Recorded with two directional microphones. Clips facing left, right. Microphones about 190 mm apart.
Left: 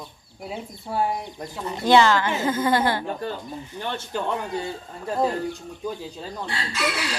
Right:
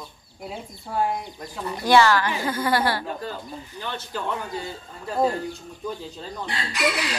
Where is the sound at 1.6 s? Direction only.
20° left (ahead or behind).